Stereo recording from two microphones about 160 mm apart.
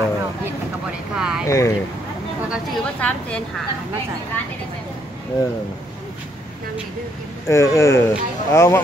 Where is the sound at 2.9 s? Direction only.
10° left (ahead or behind).